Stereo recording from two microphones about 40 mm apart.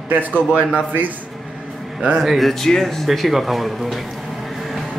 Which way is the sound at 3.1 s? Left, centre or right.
Centre.